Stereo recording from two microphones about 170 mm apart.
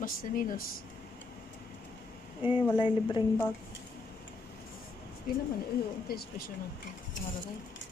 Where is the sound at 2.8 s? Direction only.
30° left (ahead or behind).